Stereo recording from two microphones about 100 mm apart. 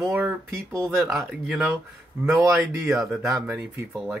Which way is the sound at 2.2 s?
30° right (ahead or behind).